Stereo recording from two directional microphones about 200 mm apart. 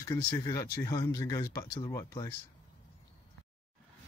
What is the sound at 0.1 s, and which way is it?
Speech, 20° left (ahead or behind).